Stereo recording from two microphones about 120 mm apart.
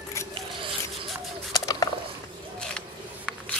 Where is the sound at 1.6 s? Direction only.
30° left (ahead or behind).